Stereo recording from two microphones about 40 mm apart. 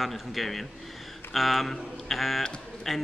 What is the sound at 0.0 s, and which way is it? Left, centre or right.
A man's voice, centre.